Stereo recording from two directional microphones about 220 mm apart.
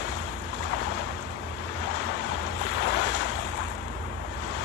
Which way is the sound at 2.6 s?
55° left (ahead or behind).